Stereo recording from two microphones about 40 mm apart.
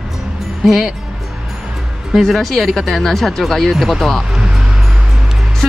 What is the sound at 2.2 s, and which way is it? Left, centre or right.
Speech, centre.